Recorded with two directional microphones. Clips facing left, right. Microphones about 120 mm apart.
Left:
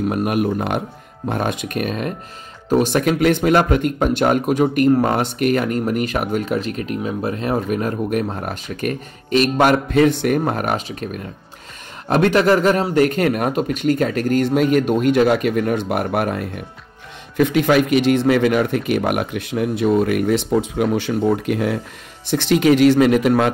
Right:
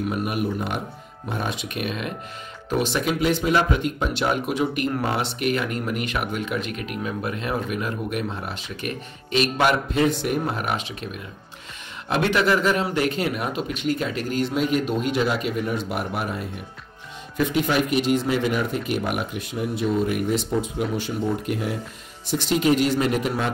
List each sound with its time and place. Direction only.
0.1 s speech: 60° left (ahead or behind); by 9.8 s 45° left (ahead or behind)
9.8 s speech: 65° left (ahead or behind); by 11.1 s 40° left (ahead or behind)
12.1 s speech: 45° left (ahead or behind); by 16.4 s 60° left (ahead or behind)
17.4 s speech: 75° left (ahead or behind)
22.3 s speech: 75° left (ahead or behind)